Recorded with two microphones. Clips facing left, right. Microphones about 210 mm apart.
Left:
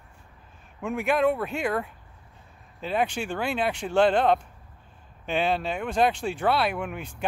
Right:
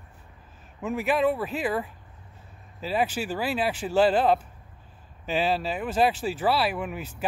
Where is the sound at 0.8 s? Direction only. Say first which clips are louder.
Left 1 dB; centre (ahead or behind).